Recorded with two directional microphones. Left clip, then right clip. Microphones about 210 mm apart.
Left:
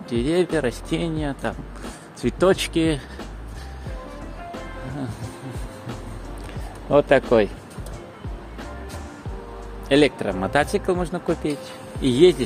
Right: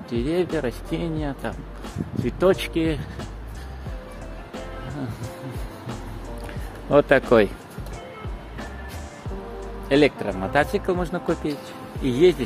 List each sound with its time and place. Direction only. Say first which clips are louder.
0.1 s speech: left 3 dB; 15° left (ahead or behind)
6.9 s speech: even; centre (ahead or behind)
9.8 s speech: left 1 dB; 15° left (ahead or behind)
12.0 s speech: left 2 dB; 20° left (ahead or behind)